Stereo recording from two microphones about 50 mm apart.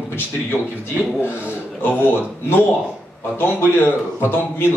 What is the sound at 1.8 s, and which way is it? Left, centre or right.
Speech, left.